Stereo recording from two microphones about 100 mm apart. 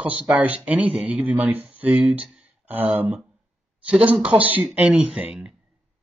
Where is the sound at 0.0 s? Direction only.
15° right (ahead or behind).